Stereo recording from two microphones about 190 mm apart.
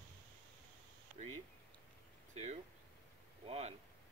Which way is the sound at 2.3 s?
35° right (ahead or behind).